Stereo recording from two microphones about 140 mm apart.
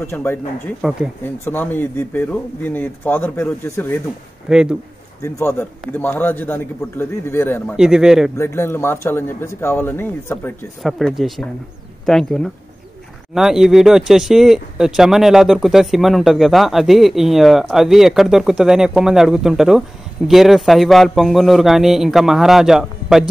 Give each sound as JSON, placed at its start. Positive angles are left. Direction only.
{"t": 0.0, "sound": "speech", "side_deg": 15}
{"t": 0.8, "sound": "speech", "side_deg": -5}
{"t": 1.2, "sound": "speech", "side_deg": 15}
{"t": 4.5, "sound": "speech", "side_deg": -5}
{"t": 5.2, "sound": "speech", "side_deg": 20}
{"t": 7.7, "sound": "speech", "side_deg": -5}
{"t": 8.4, "sound": "speech", "side_deg": 20}
{"t": 10.8, "sound": "speech", "side_deg": 0}